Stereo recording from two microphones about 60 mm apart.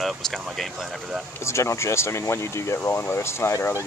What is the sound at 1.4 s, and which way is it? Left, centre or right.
Speech, left.